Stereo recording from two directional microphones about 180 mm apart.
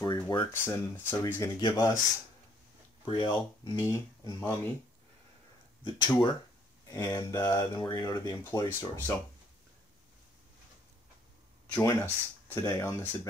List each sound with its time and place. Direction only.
0.0 s a sound: 25° left (ahead or behind)
0.5 s speech: 15° left (ahead or behind)
3.1 s speech: 25° left (ahead or behind)
5.9 s speech: 25° left (ahead or behind)
11.8 s speech: 15° left (ahead or behind)